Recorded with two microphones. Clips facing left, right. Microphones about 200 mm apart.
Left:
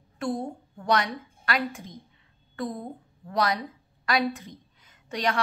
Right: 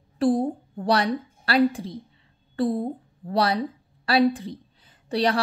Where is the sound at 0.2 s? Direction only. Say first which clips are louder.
Right 9 dB; 35° right (ahead or behind).